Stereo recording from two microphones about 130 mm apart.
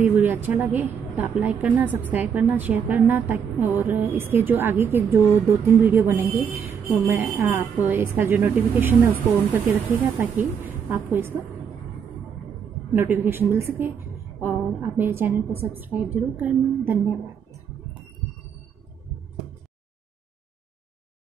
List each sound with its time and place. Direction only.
0.0 s a woman's voice: 15° right (ahead or behind)
10.9 s a woman's voice: 15° right (ahead or behind)
12.9 s a woman's voice: 15° right (ahead or behind)